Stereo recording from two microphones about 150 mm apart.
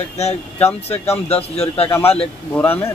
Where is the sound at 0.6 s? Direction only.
45° left (ahead or behind).